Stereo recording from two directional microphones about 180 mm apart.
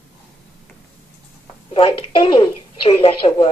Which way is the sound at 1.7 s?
30° left (ahead or behind).